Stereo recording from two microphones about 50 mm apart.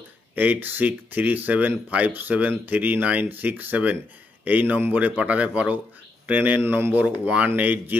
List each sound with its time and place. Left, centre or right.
0.4 s speech: right